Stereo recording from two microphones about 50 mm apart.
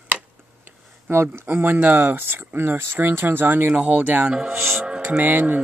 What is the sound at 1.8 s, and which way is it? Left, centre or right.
Speech, right.